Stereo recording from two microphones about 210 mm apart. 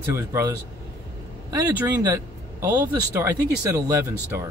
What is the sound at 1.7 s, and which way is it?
Speech, 10° right (ahead or behind).